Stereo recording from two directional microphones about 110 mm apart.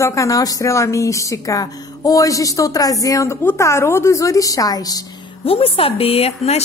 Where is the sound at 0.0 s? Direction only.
30° left (ahead or behind).